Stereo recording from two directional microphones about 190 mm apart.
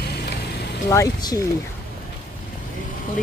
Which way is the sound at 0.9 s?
20° left (ahead or behind).